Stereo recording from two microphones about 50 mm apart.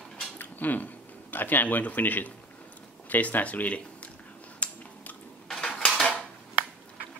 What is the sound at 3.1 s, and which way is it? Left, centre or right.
Speech, left.